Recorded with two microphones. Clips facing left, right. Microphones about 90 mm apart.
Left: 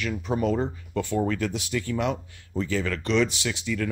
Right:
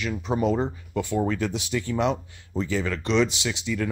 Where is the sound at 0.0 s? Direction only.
20° right (ahead or behind).